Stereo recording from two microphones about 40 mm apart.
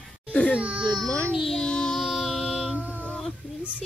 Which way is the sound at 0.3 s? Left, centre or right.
Left.